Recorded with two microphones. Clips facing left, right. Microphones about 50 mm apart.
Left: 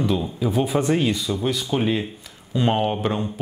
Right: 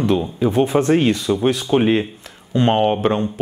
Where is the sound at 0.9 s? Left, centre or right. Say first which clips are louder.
Right 5 dB; right.